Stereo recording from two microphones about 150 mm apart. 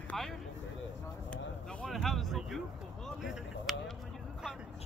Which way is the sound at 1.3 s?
5° left (ahead or behind).